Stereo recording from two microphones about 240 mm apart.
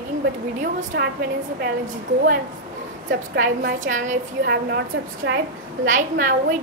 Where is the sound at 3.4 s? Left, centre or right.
Right.